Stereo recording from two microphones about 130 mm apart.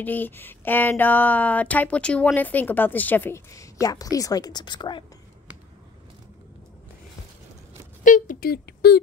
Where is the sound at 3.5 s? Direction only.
25° left (ahead or behind).